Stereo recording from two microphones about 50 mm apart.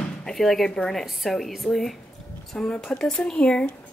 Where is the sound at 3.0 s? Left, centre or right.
Centre.